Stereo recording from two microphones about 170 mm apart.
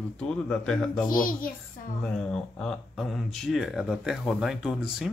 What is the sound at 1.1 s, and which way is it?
Speech, 55° left (ahead or behind).